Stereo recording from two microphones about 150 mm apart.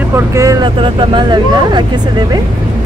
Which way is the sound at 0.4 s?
20° right (ahead or behind).